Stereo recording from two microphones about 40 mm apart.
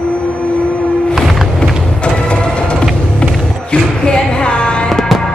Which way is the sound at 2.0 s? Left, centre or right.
Left.